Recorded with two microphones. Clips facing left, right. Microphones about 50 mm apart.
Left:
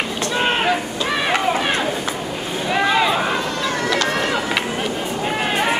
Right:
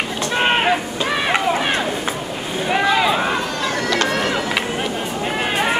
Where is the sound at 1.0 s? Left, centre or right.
Centre.